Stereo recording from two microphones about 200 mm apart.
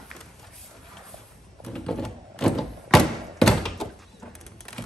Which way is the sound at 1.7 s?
5° left (ahead or behind).